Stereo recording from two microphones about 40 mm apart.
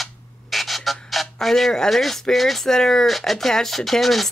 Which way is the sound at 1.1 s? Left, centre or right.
Centre.